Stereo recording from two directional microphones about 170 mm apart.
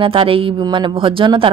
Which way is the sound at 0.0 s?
30° right (ahead or behind).